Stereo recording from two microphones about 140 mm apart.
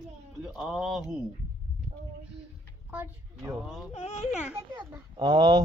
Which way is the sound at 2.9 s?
15° right (ahead or behind).